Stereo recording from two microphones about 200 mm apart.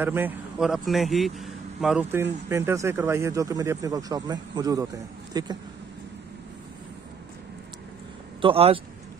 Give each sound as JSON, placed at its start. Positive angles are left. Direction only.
{"t": 0.0, "sound": "a man's voice", "side_deg": -10}
{"t": 8.4, "sound": "speech", "side_deg": -30}